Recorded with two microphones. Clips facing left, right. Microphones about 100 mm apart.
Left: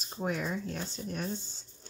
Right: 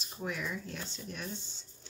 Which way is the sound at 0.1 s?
35° left (ahead or behind).